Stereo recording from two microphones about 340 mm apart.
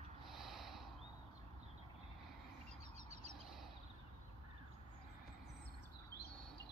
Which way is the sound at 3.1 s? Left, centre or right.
Centre.